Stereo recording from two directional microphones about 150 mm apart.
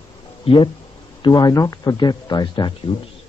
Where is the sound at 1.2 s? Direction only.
25° left (ahead or behind).